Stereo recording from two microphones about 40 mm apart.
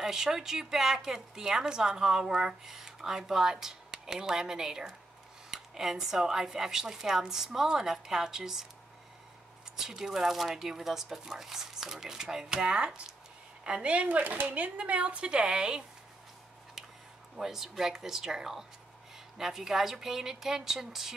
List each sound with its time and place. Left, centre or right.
0.0 s a woman's voice: centre
9.8 s a woman's voice: centre; by 14.0 s right
14.0 s speech: right
14.5 s a woman's voice: right
17.4 s a woman's voice: centre